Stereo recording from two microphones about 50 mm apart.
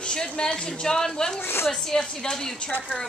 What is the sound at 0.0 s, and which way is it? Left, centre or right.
A woman's voice, centre.